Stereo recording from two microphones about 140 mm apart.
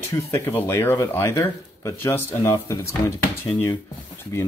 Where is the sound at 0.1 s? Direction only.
20° left (ahead or behind).